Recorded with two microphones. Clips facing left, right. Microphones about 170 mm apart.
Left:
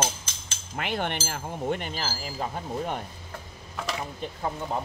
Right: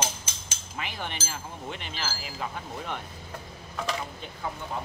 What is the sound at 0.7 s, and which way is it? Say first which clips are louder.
Speech: left 7 dB; 60° left (ahead or behind).